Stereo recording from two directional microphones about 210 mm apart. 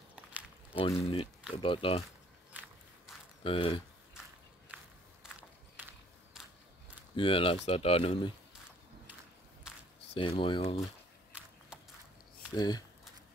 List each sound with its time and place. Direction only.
0.1 s a sound: 5° right (ahead or behind)
0.7 s speech: 25° left (ahead or behind)
2.5 s walk: 10° right (ahead or behind)
3.4 s speech: 25° left (ahead or behind)
5.8 s a sound: 10° right (ahead or behind)
7.2 s speech: 25° left (ahead or behind)
10.1 s speech: 25° left (ahead or behind)
11.7 s a sound: 5° right (ahead or behind)
12.5 s speech: 20° left (ahead or behind)